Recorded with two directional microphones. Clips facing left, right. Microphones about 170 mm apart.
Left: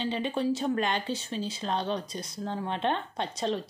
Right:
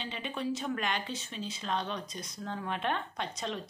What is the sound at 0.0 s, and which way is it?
Speech, 35° left (ahead or behind).